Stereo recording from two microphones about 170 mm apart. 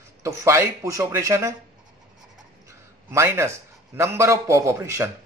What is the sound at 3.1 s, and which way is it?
A man's voice, 15° right (ahead or behind).